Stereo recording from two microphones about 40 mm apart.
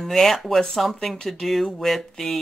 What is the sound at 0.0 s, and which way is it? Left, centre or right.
Speech, centre.